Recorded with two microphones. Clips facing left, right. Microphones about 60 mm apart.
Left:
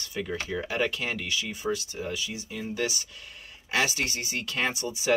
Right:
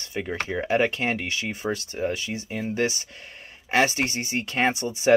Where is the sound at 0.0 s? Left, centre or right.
Right.